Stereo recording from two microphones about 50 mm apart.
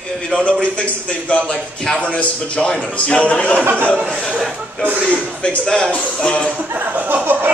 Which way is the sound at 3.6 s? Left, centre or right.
Right.